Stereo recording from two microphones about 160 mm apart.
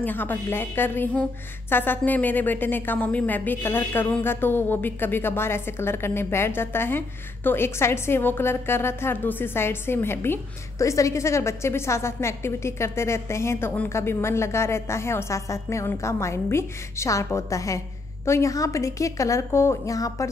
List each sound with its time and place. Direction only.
0.0 s a woman's voice: 10° left (ahead or behind)